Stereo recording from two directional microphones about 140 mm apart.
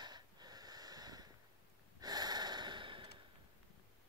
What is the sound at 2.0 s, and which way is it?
Snort, 30° right (ahead or behind).